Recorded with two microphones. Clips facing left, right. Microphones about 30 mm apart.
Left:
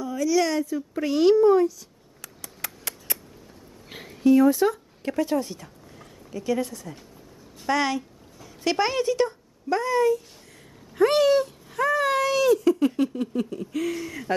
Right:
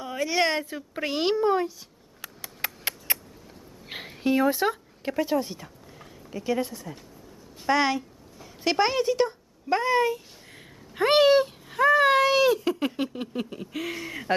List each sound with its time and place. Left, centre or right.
0.0 s a sound: right
3.9 s speech: right
5.0 s a woman's voice: centre
9.7 s speech: right